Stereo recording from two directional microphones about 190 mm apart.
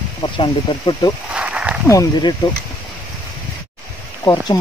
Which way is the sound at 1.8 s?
15° left (ahead or behind).